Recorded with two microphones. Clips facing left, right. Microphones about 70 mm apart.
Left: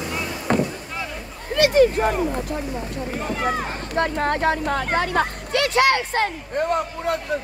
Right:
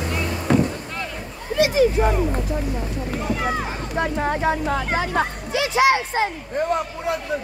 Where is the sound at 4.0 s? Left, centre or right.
Left.